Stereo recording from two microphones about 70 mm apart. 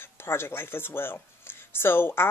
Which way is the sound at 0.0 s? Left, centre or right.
Left.